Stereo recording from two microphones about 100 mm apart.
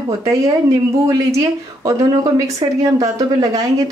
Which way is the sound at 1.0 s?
35° right (ahead or behind).